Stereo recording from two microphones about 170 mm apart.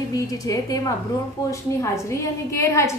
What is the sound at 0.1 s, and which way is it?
A woman's voice, 20° left (ahead or behind).